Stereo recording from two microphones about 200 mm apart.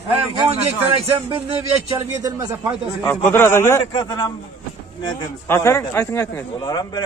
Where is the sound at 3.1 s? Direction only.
10° left (ahead or behind).